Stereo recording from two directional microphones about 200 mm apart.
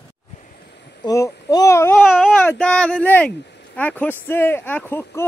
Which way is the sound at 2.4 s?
10° left (ahead or behind).